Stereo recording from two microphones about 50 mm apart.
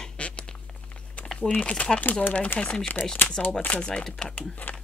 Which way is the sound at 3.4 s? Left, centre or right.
Left.